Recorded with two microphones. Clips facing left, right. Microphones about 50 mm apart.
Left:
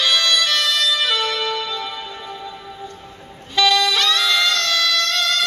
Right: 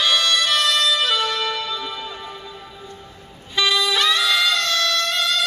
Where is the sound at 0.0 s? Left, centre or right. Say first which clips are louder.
Left 1 dB; centre.